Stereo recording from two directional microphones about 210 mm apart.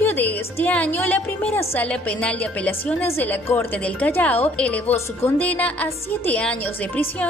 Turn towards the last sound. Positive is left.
turn(degrees=5)  # may be behind; listen again after turning